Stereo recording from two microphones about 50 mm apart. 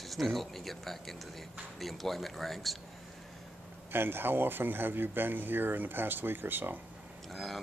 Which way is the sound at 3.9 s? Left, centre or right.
Right.